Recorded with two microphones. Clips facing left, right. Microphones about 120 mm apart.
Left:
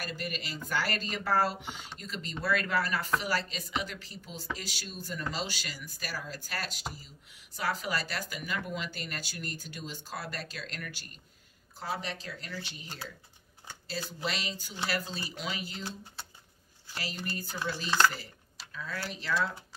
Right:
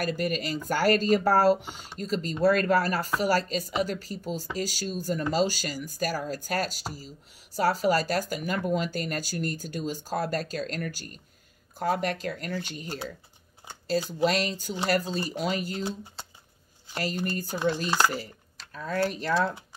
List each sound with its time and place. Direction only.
0.0 s speech: 45° right (ahead or behind)
16.9 s speech: 45° right (ahead or behind)